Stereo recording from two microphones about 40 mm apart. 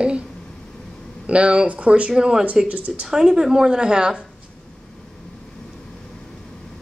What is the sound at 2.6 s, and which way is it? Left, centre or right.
Speech, right.